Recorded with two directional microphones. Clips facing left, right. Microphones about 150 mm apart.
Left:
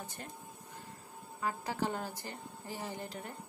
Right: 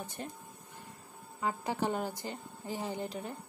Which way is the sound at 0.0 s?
15° right (ahead or behind).